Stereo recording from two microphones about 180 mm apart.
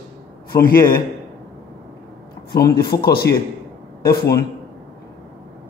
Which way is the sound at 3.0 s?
60° left (ahead or behind).